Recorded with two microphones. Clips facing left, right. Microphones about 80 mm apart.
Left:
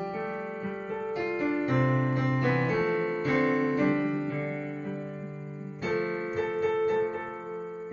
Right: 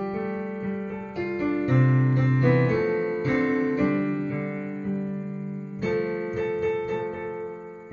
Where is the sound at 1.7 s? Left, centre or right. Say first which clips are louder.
Right 3 dB; centre.